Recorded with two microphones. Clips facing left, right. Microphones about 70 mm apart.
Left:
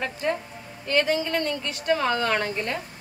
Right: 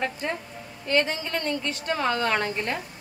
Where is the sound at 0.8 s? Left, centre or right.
Right.